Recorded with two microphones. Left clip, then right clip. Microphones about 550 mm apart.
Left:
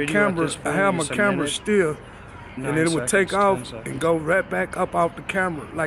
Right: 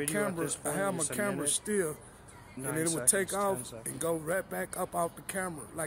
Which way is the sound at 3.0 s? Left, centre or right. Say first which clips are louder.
Left 12 dB; right.